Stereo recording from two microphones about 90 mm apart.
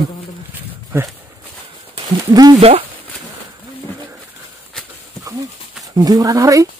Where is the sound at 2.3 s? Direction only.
45° right (ahead or behind).